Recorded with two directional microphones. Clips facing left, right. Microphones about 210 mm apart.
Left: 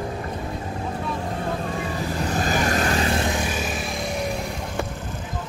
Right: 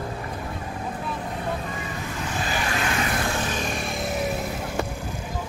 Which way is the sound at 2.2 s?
40° left (ahead or behind).